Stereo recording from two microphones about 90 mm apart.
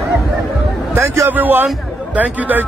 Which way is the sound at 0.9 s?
30° right (ahead or behind).